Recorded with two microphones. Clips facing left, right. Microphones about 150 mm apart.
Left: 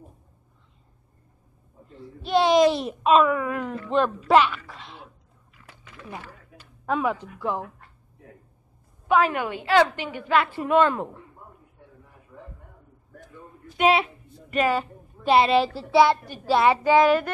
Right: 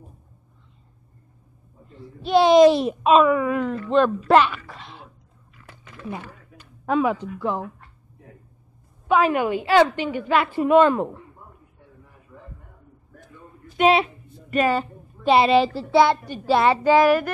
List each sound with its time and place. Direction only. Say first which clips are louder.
2.4 s a woman's voice: right 6 dB; 25° right (ahead or behind)
3.5 s a woman's voice: right 4 dB; 10° left (ahead or behind)
6.0 s a sound: right 6 dB; 20° right (ahead or behind)
6.9 s a woman's voice: right 4 dB; centre (ahead or behind)
9.1 s a woman's voice: right 3 dB; 15° right (ahead or behind)
13.7 s a woman's voice: right 3 dB; 10° left (ahead or behind)
16.6 s child singing: right 1 dB; 15° left (ahead or behind)